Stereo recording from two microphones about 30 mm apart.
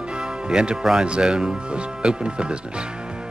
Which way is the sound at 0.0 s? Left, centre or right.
Right.